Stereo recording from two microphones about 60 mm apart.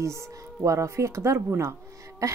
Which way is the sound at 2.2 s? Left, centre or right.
Right.